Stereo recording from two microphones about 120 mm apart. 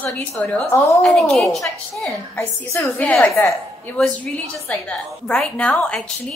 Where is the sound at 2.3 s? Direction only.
20° left (ahead or behind).